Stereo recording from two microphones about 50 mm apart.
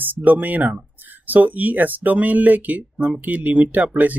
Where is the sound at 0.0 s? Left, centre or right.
Right.